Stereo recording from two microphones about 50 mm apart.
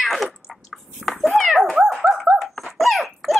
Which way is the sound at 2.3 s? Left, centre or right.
Centre.